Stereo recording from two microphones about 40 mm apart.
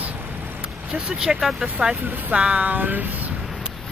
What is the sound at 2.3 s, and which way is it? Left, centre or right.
Speech, right.